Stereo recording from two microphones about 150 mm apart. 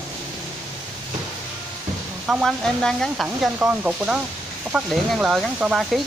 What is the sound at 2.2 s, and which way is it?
Speech, 5° right (ahead or behind).